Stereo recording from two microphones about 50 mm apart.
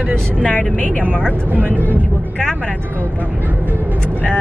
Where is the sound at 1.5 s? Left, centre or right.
Right.